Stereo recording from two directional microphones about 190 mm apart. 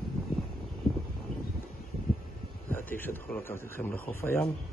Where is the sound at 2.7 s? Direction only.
10° left (ahead or behind).